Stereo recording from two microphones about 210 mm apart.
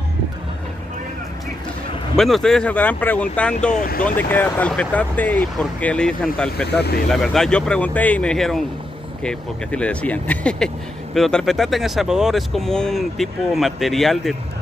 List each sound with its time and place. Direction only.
2.1 s speech: centre (ahead or behind)
3.7 s speech: 45° left (ahead or behind)
4.0 s speech: 10° left (ahead or behind)